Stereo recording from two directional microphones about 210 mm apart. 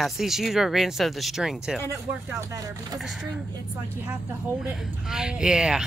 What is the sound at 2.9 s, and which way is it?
Speech, 5° right (ahead or behind).